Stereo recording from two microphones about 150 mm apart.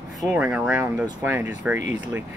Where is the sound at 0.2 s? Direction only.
10° right (ahead or behind).